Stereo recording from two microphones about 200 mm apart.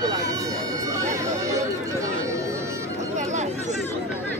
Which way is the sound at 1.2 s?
15° right (ahead or behind).